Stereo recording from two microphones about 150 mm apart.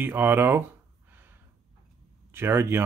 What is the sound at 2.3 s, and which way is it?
Speech, 15° right (ahead or behind).